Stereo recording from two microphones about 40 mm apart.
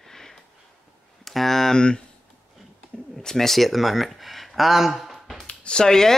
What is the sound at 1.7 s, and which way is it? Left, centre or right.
Speech, left.